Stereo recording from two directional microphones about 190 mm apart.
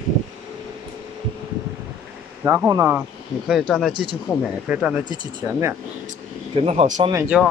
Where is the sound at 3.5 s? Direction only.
Centre (ahead or behind).